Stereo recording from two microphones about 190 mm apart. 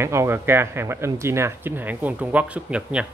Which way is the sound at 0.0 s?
15° right (ahead or behind).